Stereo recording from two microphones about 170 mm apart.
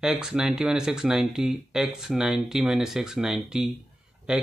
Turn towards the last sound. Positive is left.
turn(degrees=-5)  # may be behind; listen again after turning